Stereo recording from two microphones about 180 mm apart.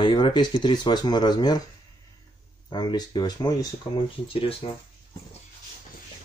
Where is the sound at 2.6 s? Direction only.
25° left (ahead or behind).